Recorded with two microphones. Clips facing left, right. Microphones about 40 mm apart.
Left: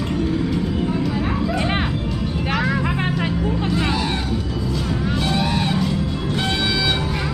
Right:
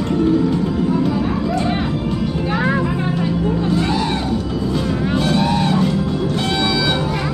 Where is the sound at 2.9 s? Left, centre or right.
Left.